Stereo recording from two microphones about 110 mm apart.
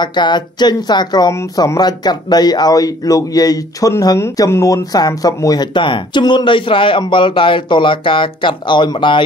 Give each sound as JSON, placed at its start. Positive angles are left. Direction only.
{"t": 0.0, "sound": "speech", "side_deg": 45}